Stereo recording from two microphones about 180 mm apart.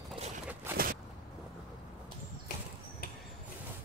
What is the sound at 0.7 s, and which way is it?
Walk, 55° right (ahead or behind).